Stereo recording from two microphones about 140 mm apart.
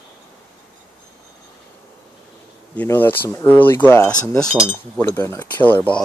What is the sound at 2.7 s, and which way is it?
Speech, 15° left (ahead or behind).